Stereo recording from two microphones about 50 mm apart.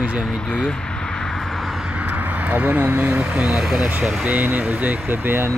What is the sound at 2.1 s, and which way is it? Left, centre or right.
Speech, right.